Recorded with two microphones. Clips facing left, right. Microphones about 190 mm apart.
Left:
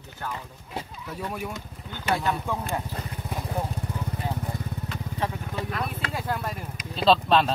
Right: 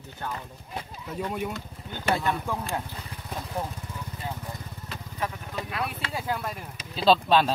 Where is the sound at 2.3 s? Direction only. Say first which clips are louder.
Left 1 dB; centre (ahead or behind).